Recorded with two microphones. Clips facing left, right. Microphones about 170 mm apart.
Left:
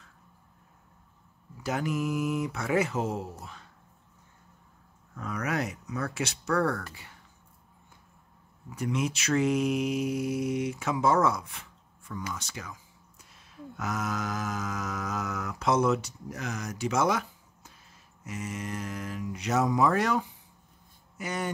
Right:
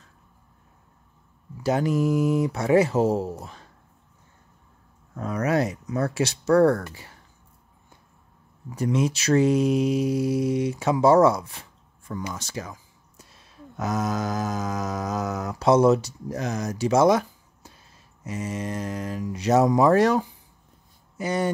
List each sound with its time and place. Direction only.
1.6 s speech: 30° right (ahead or behind)
5.1 s speech: 35° right (ahead or behind)
8.7 s speech: 35° right (ahead or behind)
13.3 s a sound: 35° right (ahead or behind)
18.2 s speech: 30° right (ahead or behind)